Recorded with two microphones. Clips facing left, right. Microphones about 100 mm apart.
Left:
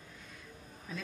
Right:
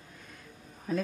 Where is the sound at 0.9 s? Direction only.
45° right (ahead or behind).